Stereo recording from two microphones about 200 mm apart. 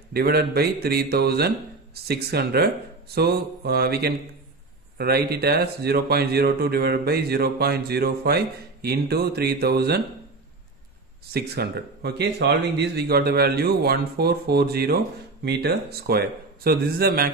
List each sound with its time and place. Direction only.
0.1 s speech: 50° right (ahead or behind)
11.3 s speech: 55° right (ahead or behind)